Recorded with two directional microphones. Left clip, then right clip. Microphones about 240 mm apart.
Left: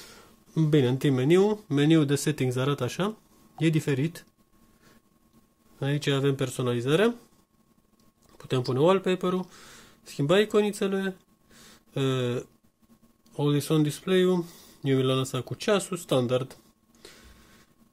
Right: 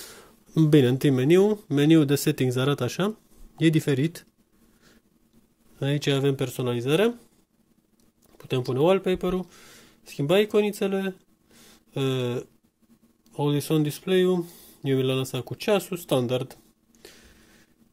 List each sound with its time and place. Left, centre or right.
0.6 s speech: centre
5.8 s speech: centre
8.3 s speech: centre
17.0 s a sound: centre